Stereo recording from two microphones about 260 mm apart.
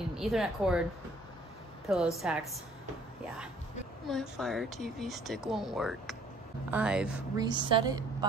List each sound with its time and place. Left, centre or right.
0.1 s speech: centre
1.9 s speech: centre
4.1 s speech: centre
7.3 s a woman's voice: centre